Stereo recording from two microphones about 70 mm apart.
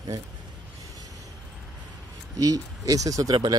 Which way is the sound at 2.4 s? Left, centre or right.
Right.